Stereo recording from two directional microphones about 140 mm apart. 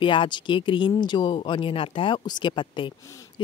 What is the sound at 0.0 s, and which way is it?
Speech, 35° left (ahead or behind).